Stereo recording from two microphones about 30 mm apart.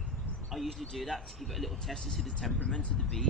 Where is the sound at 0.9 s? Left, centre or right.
Centre.